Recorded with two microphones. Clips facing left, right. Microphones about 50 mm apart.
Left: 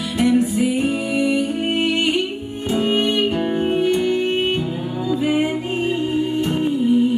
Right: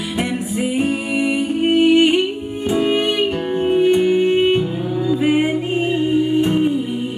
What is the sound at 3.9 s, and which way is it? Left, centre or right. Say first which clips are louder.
Music: right 4 dB; centre.